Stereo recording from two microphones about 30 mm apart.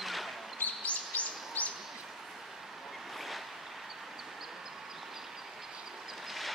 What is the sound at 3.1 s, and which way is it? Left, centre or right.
Waves, centre.